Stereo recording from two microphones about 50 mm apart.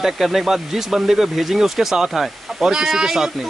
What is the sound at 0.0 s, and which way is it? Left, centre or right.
Speech, centre.